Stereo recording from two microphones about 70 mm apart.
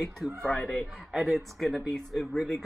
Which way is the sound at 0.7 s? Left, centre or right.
Centre.